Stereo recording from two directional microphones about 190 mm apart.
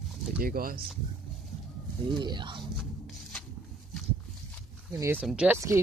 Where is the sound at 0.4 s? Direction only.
50° right (ahead or behind).